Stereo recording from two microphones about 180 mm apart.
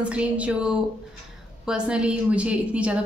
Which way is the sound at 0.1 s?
5° right (ahead or behind).